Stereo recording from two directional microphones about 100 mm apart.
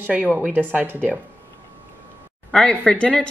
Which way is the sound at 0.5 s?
20° right (ahead or behind).